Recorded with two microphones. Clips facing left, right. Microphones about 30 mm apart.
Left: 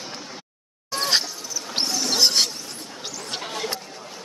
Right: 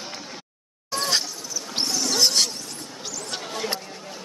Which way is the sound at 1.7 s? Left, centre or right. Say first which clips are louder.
Left 1 dB; left.